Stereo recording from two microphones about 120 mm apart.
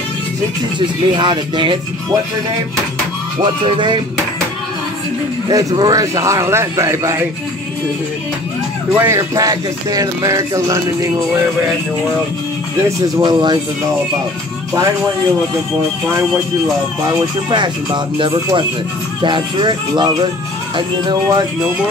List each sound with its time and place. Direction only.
0.7 s speech: 40° right (ahead or behind)
3.6 s speech: 40° right (ahead or behind)
5.5 s music: 30° right (ahead or behind)
8.9 s music: 20° right (ahead or behind)
9.3 s music: 30° right (ahead or behind)
13.2 s speech: 40° right (ahead or behind)
17.0 s speech: 40° right (ahead or behind)